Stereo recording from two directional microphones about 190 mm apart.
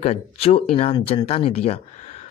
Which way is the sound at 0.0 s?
30° left (ahead or behind).